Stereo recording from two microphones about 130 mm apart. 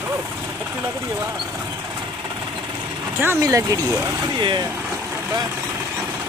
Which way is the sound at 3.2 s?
20° right (ahead or behind).